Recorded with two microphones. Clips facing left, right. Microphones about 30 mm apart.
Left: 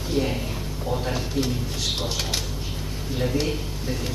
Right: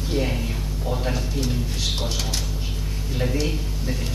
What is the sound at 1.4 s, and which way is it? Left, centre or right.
Speech, centre.